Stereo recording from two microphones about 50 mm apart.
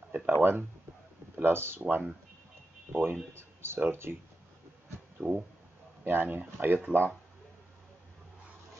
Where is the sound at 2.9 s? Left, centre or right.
Right.